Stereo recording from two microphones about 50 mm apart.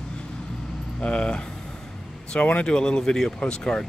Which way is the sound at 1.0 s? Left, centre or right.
Left.